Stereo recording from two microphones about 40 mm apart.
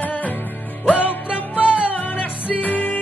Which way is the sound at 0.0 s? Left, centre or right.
Left.